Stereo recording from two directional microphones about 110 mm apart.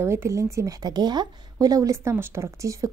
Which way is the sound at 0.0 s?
25° right (ahead or behind).